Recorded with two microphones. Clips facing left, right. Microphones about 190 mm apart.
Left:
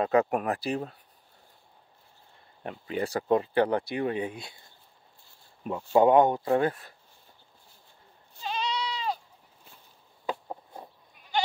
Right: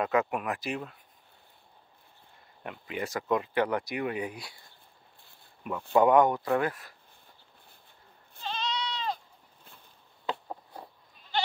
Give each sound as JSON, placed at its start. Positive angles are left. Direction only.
{"t": 0.0, "sound": "speech", "side_deg": 35}
{"t": 2.6, "sound": "speech", "side_deg": 35}
{"t": 5.6, "sound": "speech", "side_deg": 30}
{"t": 8.4, "sound": "goat", "side_deg": 10}
{"t": 10.2, "sound": "goat", "side_deg": 15}